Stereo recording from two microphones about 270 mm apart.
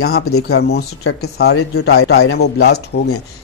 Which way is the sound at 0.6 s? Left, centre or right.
Left.